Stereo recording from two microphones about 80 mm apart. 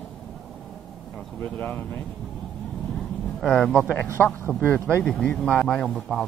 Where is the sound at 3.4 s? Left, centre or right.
Centre.